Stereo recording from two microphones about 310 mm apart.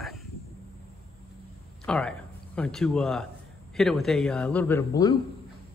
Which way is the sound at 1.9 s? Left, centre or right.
Centre.